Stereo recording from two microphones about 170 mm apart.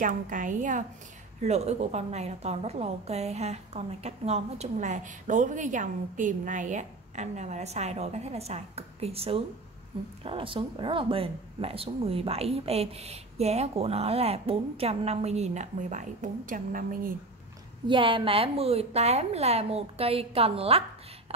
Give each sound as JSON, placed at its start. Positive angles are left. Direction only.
{"t": 0.0, "sound": "a woman's voice", "side_deg": -50}
{"t": 17.8, "sound": "a woman's voice", "side_deg": -30}